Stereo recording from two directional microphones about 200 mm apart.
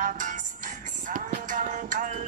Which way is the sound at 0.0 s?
40° right (ahead or behind).